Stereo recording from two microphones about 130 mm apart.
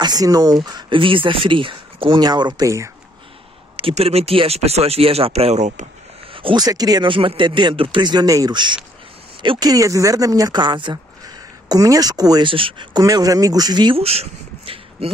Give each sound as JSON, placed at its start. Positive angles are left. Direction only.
{"t": 0.0, "sound": "speech", "side_deg": -30}
{"t": 3.7, "sound": "speech", "side_deg": -50}
{"t": 6.3, "sound": "speech", "side_deg": -35}
{"t": 13.0, "sound": "speech", "side_deg": -25}
{"t": 13.9, "sound": "speech", "side_deg": -50}